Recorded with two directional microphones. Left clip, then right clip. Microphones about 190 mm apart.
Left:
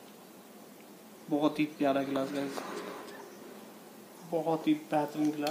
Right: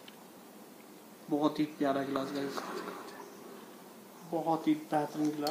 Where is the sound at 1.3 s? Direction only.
20° left (ahead or behind).